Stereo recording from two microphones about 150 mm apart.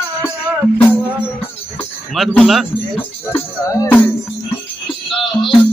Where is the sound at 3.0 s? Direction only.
15° left (ahead or behind).